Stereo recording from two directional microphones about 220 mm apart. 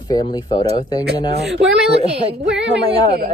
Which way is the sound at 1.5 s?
60° right (ahead or behind).